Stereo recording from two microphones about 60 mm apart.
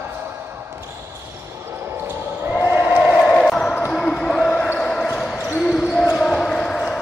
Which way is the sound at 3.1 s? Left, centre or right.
Centre.